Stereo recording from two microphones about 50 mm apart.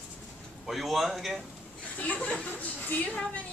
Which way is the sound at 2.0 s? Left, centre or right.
Left.